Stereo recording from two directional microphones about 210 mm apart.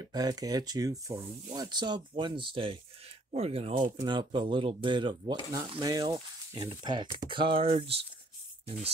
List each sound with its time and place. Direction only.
0.0 s speech: 20° right (ahead or behind)